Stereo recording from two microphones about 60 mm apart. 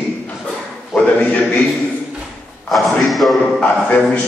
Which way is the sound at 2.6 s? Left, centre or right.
Centre.